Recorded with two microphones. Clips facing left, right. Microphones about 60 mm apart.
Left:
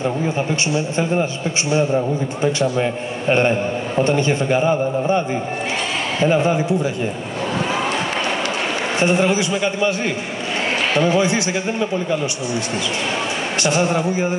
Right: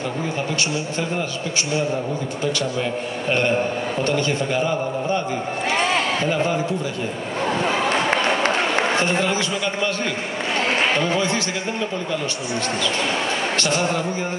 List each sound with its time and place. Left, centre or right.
2.4 s a man's voice: left
6.2 s a man's voice: centre
7.9 s a sound: right
9.0 s a man's voice: centre
11.0 s a man's voice: centre
13.6 s a man's voice: centre